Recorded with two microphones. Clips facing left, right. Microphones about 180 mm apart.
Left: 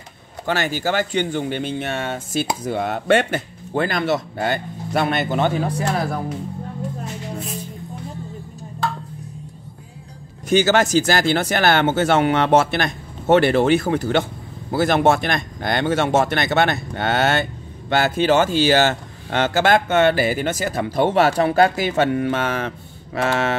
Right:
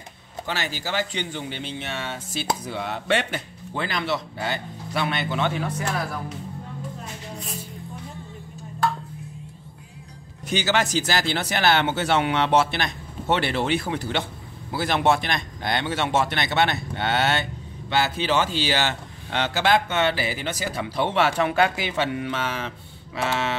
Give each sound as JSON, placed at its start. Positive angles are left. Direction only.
{"t": 0.5, "sound": "speech", "side_deg": 50}
{"t": 10.5, "sound": "speech", "side_deg": 45}